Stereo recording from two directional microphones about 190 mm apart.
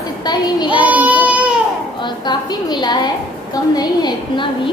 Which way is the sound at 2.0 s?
20° left (ahead or behind).